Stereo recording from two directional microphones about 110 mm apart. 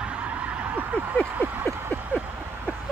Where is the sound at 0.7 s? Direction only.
15° right (ahead or behind).